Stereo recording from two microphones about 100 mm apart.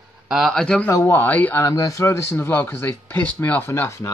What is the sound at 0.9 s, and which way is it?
Speech, 35° left (ahead or behind).